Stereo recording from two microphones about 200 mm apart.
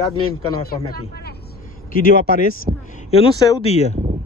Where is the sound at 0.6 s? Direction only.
50° left (ahead or behind).